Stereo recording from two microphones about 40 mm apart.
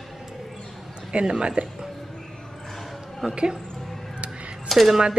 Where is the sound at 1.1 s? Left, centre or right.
Right.